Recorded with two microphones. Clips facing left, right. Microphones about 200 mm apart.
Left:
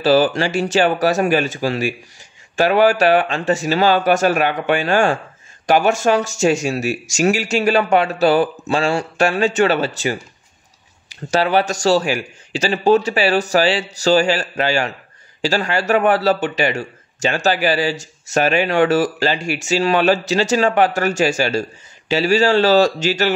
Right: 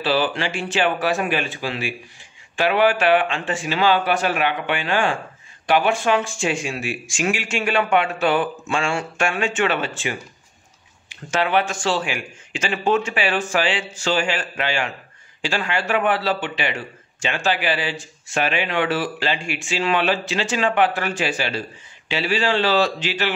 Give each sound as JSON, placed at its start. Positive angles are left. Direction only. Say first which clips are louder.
{"t": 0.0, "sound": "speech", "louder": "left 7 dB", "side_deg": 40}